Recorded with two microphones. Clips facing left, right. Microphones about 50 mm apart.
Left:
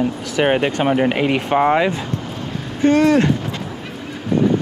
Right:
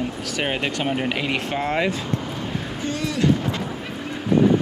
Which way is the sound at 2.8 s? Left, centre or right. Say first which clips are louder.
Left 12 dB; left.